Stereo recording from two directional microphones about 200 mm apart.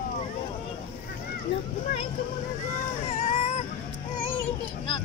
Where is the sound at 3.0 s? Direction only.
30° left (ahead or behind).